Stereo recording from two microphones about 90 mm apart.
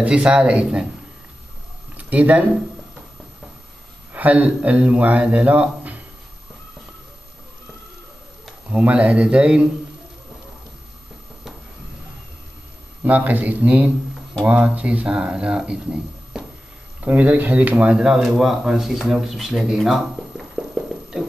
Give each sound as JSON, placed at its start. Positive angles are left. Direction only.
{"t": 0.0, "sound": "speech", "side_deg": -10}
{"t": 2.0, "sound": "speech", "side_deg": -15}
{"t": 4.1, "sound": "speech", "side_deg": -15}
{"t": 8.6, "sound": "speech", "side_deg": -15}
{"t": 13.0, "sound": "speech", "side_deg": -20}